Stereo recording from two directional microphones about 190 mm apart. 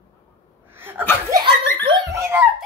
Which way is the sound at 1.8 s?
15° right (ahead or behind).